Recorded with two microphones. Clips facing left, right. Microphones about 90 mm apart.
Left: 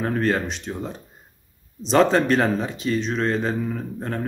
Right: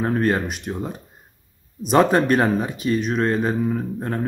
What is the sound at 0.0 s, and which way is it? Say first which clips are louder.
Speech: right 2 dB; 15° right (ahead or behind).